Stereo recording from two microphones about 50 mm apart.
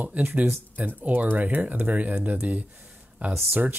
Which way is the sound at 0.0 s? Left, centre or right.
Right.